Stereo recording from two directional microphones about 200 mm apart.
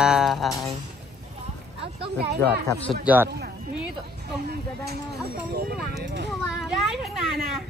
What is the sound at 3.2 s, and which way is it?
Speech, 55° right (ahead or behind).